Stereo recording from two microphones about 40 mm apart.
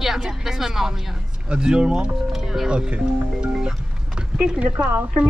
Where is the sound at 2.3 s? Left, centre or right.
Centre.